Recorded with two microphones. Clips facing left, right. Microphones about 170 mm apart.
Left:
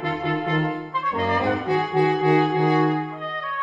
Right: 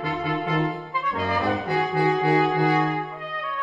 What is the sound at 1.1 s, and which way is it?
Brass instrument, 20° left (ahead or behind).